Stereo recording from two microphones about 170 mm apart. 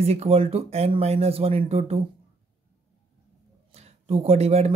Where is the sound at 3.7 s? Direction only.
40° right (ahead or behind).